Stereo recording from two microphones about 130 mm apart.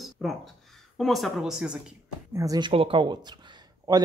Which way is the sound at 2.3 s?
25° right (ahead or behind).